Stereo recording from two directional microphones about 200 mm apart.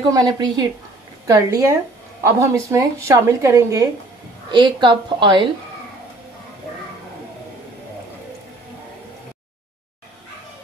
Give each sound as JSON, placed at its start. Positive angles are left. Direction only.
{"t": 0.1, "sound": "a woman's voice", "side_deg": -20}